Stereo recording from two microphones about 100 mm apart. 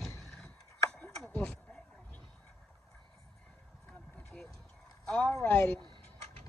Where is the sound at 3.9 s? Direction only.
15° left (ahead or behind).